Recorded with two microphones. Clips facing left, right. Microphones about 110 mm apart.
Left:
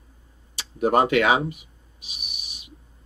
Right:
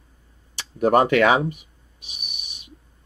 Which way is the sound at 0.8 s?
40° right (ahead or behind).